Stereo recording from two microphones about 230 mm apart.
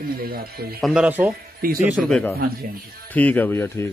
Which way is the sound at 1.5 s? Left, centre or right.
Right.